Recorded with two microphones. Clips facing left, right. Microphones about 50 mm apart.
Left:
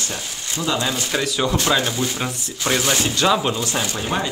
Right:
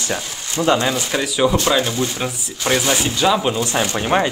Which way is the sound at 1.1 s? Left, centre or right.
Centre.